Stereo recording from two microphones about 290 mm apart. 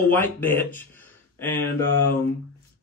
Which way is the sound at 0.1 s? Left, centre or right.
Centre.